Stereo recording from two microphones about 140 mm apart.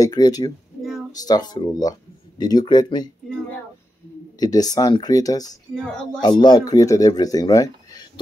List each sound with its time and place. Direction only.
0.0 s speech: 30° left (ahead or behind)
4.4 s speech: 25° left (ahead or behind)
5.8 s speech: 5° left (ahead or behind)
6.4 s speech: 30° left (ahead or behind)